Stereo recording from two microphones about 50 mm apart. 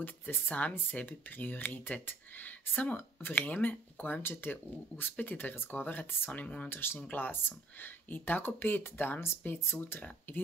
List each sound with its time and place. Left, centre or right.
0.0 s speech: left
6.4 s speech: left
6.7 s speech: left
7.0 s speech: left